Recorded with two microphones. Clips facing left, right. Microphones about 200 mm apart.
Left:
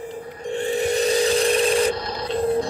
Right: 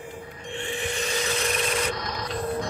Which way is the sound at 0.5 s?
40° left (ahead or behind).